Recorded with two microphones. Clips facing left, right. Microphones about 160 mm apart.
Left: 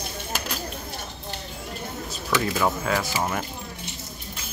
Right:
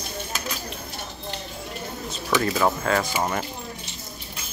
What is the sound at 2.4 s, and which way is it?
Speech, 5° left (ahead or behind).